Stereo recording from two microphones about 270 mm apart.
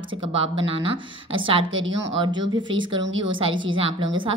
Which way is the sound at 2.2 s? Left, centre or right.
Centre.